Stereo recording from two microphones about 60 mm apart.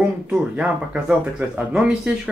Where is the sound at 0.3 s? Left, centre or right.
Centre.